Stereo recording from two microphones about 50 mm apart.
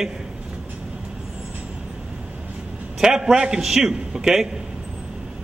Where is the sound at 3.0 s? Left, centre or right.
Centre.